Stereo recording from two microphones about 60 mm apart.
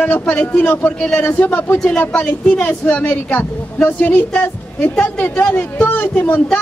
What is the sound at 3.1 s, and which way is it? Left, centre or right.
Speech, left.